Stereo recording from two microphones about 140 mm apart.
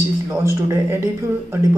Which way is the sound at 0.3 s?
20° right (ahead or behind).